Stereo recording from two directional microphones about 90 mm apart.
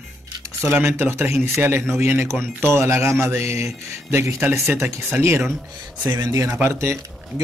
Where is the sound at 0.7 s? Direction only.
25° right (ahead or behind).